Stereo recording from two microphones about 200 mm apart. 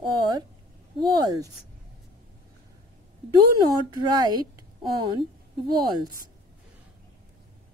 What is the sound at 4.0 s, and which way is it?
Speech, 20° right (ahead or behind).